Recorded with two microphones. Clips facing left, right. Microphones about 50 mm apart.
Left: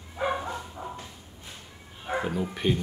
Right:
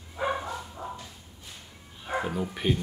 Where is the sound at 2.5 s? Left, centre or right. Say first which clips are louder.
Left 1 dB; centre.